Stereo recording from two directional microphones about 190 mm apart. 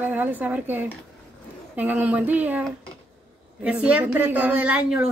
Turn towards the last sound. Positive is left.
turn(degrees=-5)  # may be behind; listen again after turning